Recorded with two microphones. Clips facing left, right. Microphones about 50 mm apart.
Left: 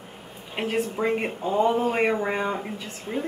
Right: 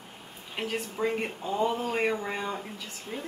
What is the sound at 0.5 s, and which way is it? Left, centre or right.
Speech, left.